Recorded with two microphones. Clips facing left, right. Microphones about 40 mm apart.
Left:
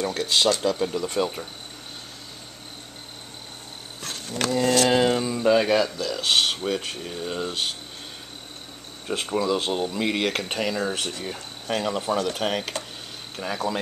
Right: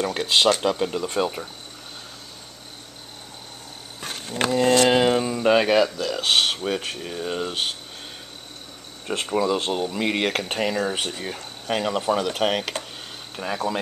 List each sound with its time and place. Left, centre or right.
0.0 s speech: right
4.0 s speech: centre
5.9 s speech: centre
9.0 s speech: centre
13.4 s speech: centre